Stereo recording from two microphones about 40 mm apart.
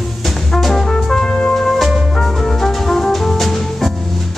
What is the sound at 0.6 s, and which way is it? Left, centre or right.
Music, centre.